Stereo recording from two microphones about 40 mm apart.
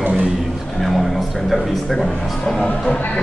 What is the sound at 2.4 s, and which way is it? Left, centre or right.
Speech, centre.